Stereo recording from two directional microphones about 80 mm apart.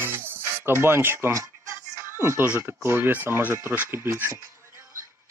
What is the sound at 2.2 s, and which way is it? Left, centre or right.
Speech, right.